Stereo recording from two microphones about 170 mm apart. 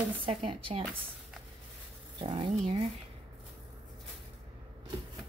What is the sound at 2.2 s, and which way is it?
Speech, 30° right (ahead or behind).